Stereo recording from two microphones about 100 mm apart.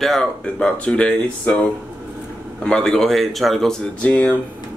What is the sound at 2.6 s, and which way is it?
Speech, 5° left (ahead or behind).